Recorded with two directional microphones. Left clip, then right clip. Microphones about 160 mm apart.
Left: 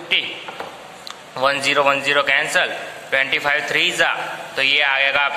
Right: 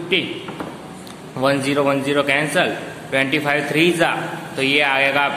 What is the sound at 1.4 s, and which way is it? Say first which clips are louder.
A man's voice: left 1 dB; 20° left (ahead or behind).